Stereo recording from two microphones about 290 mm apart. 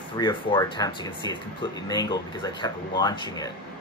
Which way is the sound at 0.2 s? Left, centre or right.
Centre.